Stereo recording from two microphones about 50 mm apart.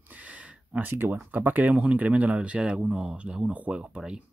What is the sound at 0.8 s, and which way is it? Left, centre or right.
Speech, right.